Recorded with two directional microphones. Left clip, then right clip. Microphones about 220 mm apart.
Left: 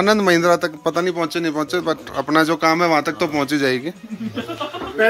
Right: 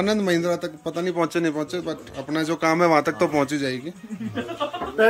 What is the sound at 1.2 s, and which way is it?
Speech, 15° right (ahead or behind).